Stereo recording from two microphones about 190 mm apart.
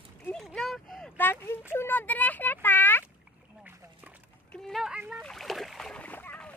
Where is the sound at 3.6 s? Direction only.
10° right (ahead or behind).